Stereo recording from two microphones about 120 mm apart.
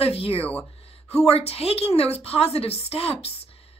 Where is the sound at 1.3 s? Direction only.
55° left (ahead or behind).